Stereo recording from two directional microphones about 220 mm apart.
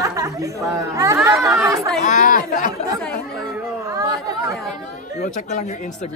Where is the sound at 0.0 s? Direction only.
15° right (ahead or behind).